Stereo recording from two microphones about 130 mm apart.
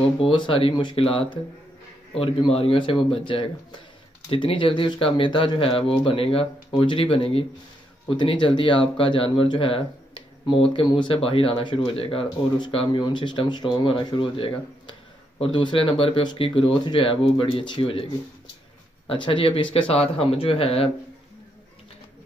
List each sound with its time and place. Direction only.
0.2 s speech: 40° left (ahead or behind)
19.0 s speech: 40° left (ahead or behind)